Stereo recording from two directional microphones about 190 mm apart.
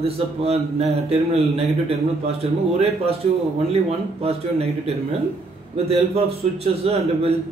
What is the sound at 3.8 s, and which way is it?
A man's voice, 35° right (ahead or behind).